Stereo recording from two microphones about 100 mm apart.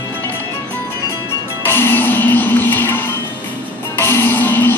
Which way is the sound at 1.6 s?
20° left (ahead or behind).